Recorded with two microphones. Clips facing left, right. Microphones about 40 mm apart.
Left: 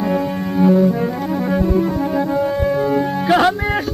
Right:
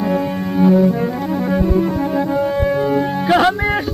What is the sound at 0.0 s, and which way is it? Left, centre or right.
Double bass, centre.